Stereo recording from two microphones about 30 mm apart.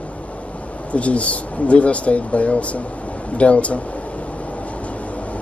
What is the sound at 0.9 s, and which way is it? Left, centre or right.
Speech, left.